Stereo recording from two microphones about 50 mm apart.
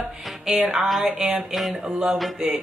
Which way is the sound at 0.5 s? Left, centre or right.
Centre.